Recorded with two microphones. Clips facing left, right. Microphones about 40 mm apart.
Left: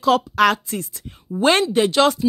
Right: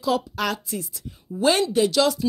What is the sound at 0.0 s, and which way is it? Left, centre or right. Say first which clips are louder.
A woman's voice: left 8 dB; left.